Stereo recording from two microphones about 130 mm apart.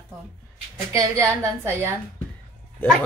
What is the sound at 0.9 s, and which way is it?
A woman's voice, 25° right (ahead or behind).